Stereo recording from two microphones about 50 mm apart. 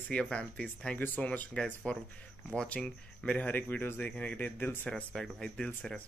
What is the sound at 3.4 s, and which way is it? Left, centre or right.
Speech, left.